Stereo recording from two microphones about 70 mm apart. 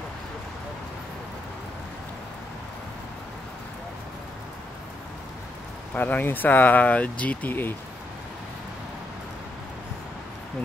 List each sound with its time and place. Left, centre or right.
5.9 s speech: left